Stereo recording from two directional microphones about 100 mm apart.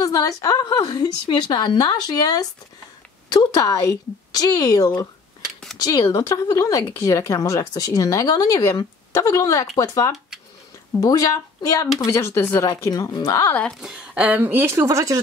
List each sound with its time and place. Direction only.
0.0 s speech: 35° left (ahead or behind)
5.4 s a sound: 5° left (ahead or behind)
5.8 s speech: 40° left (ahead or behind)
13.7 s speech: 10° right (ahead or behind); by 15.1 s 30° right (ahead or behind)